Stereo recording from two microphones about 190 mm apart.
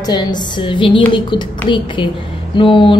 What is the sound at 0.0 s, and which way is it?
A woman's voice, 20° left (ahead or behind).